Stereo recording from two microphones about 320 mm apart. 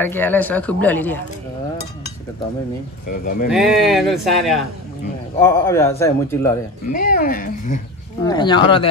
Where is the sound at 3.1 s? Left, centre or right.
Left.